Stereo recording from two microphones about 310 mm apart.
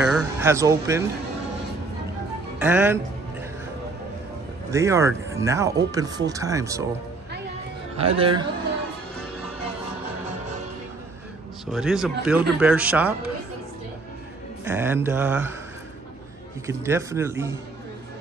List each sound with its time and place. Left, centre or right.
0.0 s music: centre
2.6 s a man's voice: centre
4.6 s speech: centre
8.2 s speech: centre
11.6 s a man's voice: centre
14.6 s speech: centre
16.6 s speech: centre